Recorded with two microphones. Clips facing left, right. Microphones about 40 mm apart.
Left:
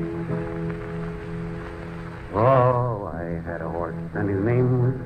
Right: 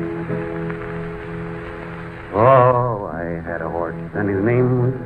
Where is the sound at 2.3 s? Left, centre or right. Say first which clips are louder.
Right 6 dB; right.